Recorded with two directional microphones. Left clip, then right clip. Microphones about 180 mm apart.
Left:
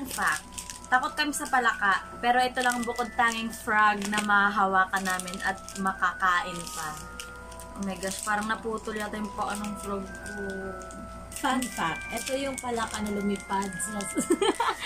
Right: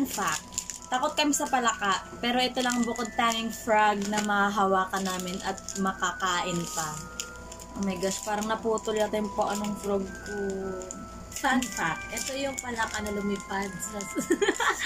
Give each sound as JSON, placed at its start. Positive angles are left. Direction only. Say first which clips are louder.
{"t": 0.2, "sound": "a woman's voice", "louder": "left 2 dB", "side_deg": -10}
{"t": 11.4, "sound": "speech", "louder": "right 1 dB", "side_deg": 15}